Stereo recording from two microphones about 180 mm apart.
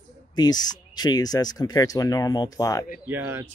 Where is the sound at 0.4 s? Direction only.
20° left (ahead or behind).